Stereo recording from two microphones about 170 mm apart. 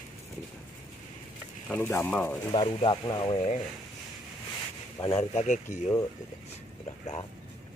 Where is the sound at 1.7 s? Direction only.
10° left (ahead or behind).